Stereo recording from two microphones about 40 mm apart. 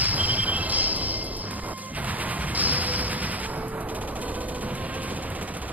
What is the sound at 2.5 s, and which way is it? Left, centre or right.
Music, right.